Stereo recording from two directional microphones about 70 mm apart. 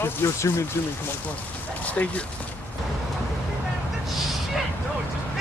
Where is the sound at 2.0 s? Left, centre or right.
Left.